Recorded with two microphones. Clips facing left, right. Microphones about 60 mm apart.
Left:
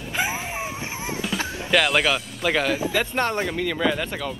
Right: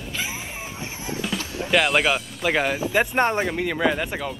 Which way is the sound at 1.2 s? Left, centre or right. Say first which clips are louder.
Right 1 dB; centre.